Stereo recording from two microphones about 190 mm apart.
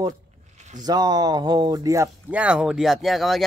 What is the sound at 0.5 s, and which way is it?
Zipper, 40° right (ahead or behind).